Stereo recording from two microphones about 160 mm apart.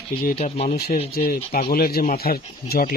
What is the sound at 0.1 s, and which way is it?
Speech, 70° left (ahead or behind).